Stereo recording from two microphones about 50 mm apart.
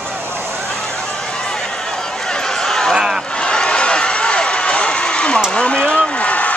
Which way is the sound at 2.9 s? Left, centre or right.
Centre.